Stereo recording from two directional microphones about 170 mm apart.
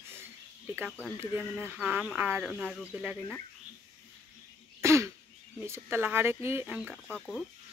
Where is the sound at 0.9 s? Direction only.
5° left (ahead or behind).